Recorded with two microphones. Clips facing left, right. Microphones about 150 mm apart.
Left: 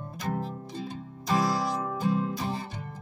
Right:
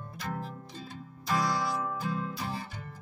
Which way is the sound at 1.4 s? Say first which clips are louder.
Left 2 dB; 35° left (ahead or behind).